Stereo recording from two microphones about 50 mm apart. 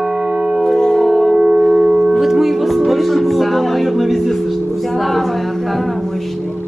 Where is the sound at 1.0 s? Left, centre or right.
Centre.